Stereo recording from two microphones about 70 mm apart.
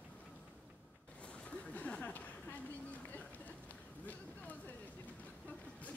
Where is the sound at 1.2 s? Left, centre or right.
Centre.